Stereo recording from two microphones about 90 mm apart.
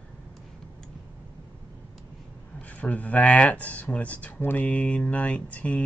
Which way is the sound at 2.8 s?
15° left (ahead or behind).